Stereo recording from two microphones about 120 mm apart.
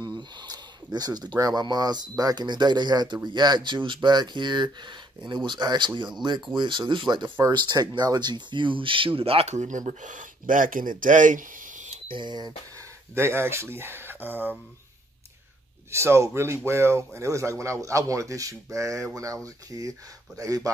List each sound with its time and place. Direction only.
0.0 s speech: 35° right (ahead or behind); by 12.0 s 90° right
12.1 s speech: 40° right (ahead or behind)
13.1 s speech: 20° right (ahead or behind)
15.9 s speech: 20° right (ahead or behind)